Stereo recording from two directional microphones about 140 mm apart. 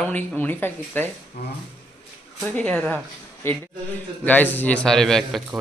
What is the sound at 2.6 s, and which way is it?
A woman's voice, 10° left (ahead or behind).